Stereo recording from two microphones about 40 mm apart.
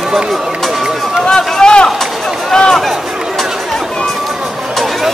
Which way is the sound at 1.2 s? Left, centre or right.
Centre.